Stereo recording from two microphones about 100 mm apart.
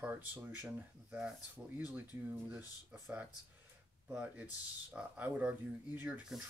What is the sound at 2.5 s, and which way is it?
Speech, 15° right (ahead or behind).